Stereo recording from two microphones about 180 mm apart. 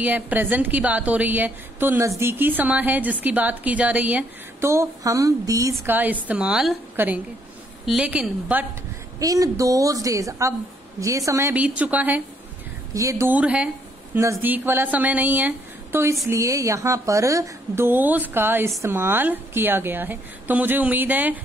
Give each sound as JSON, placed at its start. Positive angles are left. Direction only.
{"t": 0.0, "sound": "a woman's voice", "side_deg": -10}
{"t": 9.2, "sound": "a woman's voice", "side_deg": -20}